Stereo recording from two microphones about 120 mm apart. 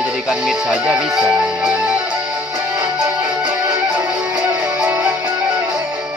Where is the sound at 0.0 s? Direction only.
5° right (ahead or behind).